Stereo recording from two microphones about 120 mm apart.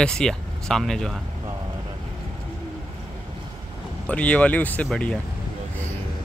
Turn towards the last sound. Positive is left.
turn(degrees=10)  # may be behind; listen again after turning